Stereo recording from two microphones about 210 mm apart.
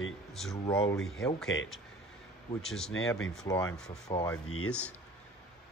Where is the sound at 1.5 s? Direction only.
65° left (ahead or behind).